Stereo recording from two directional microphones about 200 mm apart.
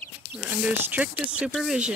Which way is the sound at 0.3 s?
5° right (ahead or behind).